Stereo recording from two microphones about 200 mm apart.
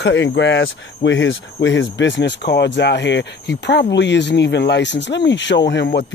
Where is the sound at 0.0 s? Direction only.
60° left (ahead or behind).